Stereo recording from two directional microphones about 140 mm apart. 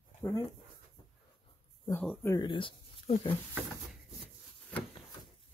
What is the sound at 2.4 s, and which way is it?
Speech, 35° left (ahead or behind).